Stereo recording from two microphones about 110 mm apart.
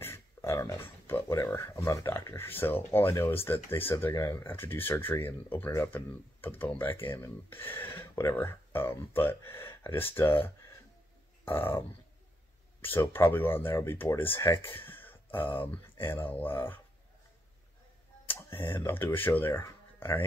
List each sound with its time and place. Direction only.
0.0 s a sound: 25° left (ahead or behind)
1.4 s speech: 25° left (ahead or behind)
12.8 s speech: 20° left (ahead or behind)
18.7 s speech: 20° left (ahead or behind)